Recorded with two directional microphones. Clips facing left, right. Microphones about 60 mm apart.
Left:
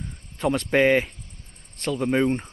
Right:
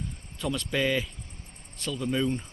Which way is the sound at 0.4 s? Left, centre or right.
Left.